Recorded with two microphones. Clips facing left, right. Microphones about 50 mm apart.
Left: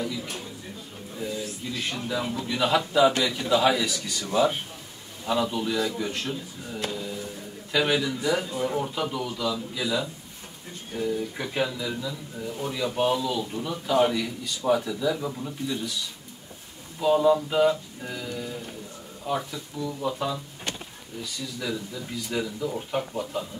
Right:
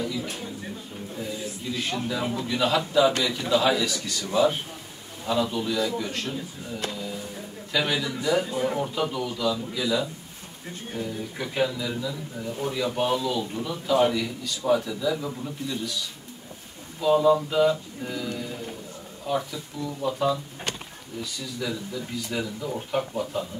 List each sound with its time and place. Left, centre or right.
0.0 s speech: centre
1.9 s a man's voice: centre
8.4 s speech: right
8.7 s a man's voice: centre
17.1 s speech: centre
21.5 s speech: centre